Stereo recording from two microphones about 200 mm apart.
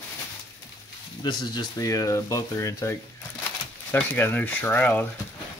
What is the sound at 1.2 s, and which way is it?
Speech, 20° left (ahead or behind).